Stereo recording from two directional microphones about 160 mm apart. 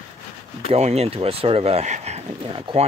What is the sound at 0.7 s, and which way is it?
Speech, 40° right (ahead or behind).